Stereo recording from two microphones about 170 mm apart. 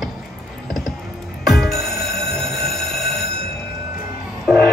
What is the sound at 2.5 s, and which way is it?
Train, centre (ahead or behind).